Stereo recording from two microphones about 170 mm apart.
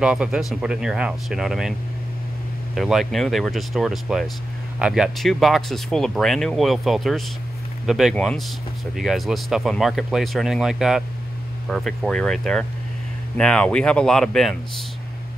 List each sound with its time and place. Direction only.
0.0 s speech: 5° right (ahead or behind)